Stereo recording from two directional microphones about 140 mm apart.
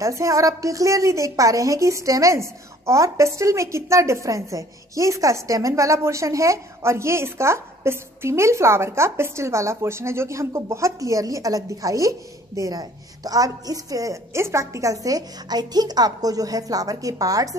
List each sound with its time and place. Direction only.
0.0 s a woman's voice: 20° right (ahead or behind)